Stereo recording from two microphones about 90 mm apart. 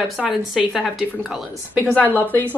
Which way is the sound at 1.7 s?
15° left (ahead or behind).